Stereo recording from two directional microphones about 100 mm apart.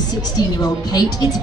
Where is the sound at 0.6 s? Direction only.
40° left (ahead or behind).